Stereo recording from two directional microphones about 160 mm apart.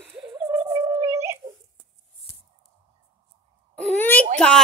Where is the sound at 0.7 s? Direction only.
20° right (ahead or behind).